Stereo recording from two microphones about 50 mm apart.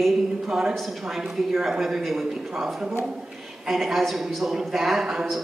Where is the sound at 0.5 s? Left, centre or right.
Centre.